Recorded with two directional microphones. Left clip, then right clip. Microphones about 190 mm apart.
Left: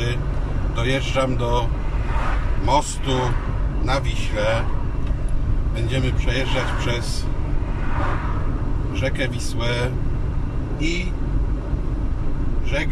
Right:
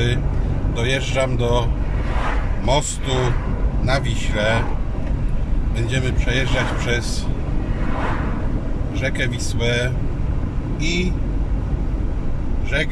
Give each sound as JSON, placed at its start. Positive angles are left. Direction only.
{"t": 0.7, "sound": "speech", "side_deg": -15}
{"t": 5.9, "sound": "speech", "side_deg": -15}
{"t": 9.0, "sound": "speech", "side_deg": -15}